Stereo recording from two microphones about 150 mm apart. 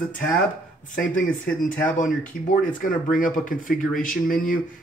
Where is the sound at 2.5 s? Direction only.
65° left (ahead or behind).